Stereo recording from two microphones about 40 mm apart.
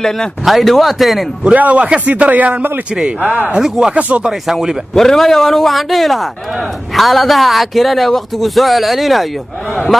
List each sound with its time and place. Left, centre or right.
0.5 s speech: centre
1.5 s a man's voice: right
3.5 s speech: centre
3.9 s speech: right
4.3 s speech: centre
4.9 s a man's voice: centre